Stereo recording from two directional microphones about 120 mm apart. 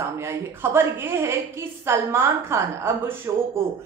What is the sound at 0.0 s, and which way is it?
A woman's voice, 20° right (ahead or behind).